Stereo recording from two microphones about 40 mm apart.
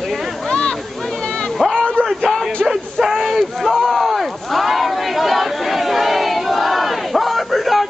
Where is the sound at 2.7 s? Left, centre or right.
Centre.